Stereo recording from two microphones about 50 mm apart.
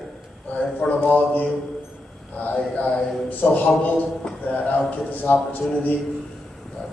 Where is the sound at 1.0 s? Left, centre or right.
Left.